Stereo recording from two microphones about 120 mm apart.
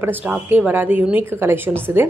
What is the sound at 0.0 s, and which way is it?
Speech, 15° right (ahead or behind).